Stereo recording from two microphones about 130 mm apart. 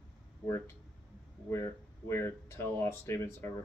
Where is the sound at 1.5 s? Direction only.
20° left (ahead or behind).